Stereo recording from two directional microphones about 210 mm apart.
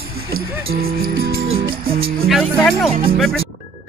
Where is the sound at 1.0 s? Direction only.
45° right (ahead or behind).